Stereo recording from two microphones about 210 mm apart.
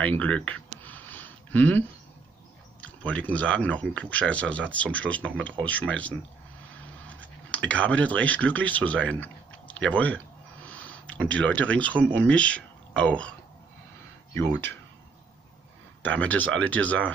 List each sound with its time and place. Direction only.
0.0 s a sound: 5° left (ahead or behind)
2.8 s speech: 5° left (ahead or behind)
7.7 s speech: 5° left (ahead or behind)
14.3 s speech: 10° left (ahead or behind)
16.1 s speech: 5° left (ahead or behind)